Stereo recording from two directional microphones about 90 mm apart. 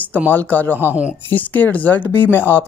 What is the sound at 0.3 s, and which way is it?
Speech, 20° left (ahead or behind).